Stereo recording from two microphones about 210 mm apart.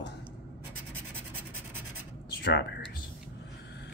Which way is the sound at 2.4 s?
50° left (ahead or behind).